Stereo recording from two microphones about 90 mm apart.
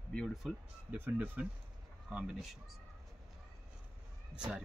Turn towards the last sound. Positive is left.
turn(degrees=-10)  # may be behind; listen again after turning